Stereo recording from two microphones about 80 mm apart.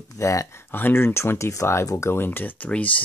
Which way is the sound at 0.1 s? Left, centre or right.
Left.